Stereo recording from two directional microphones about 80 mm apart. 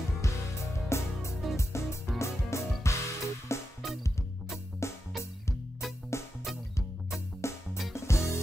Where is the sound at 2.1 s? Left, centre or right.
Left.